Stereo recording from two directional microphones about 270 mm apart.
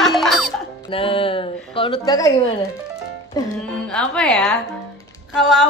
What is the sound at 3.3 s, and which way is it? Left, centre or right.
Music, centre.